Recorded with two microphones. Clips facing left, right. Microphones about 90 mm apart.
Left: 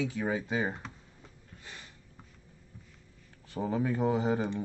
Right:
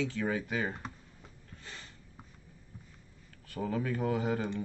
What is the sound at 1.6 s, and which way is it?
Snort, 5° left (ahead or behind).